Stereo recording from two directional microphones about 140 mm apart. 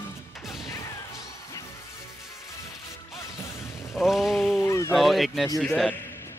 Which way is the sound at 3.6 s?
20° left (ahead or behind).